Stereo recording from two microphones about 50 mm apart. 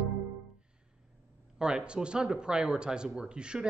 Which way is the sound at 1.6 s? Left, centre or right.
Centre.